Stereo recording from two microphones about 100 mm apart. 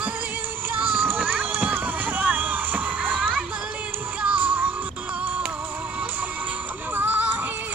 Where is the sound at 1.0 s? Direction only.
20° right (ahead or behind).